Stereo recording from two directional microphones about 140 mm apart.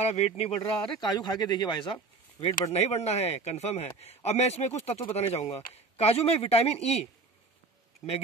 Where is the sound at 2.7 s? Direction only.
50° left (ahead or behind).